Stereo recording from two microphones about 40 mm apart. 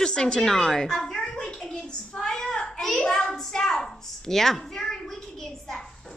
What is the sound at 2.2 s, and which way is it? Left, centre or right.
Child singing, centre.